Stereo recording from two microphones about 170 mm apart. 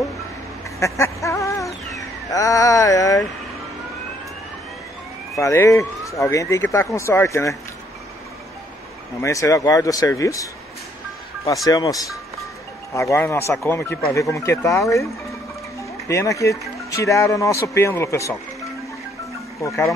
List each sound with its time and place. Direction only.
0.7 s a sound: 15° left (ahead or behind)
5.4 s speech: 15° left (ahead or behind)
9.2 s speech: 20° left (ahead or behind)
16.1 s speech: 20° left (ahead or behind)